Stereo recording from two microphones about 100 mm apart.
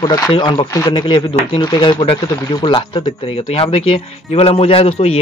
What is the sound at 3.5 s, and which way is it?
Speech, 75° left (ahead or behind).